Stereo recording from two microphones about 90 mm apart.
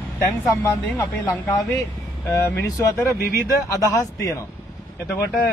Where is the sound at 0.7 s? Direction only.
35° left (ahead or behind).